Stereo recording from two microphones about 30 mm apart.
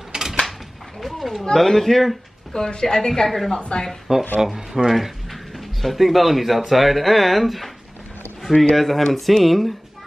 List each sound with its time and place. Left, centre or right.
0.1 s a sound: centre
0.5 s a sound: centre
1.6 s a man's voice: centre
2.5 s a woman's voice: left
3.5 s a woman's voice: left
4.4 s speech: centre
4.9 s speech: centre
8.7 s speech: centre